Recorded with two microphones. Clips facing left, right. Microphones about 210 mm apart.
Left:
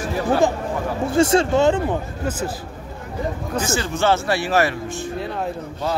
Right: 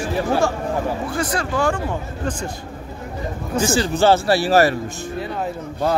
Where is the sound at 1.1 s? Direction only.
25° left (ahead or behind).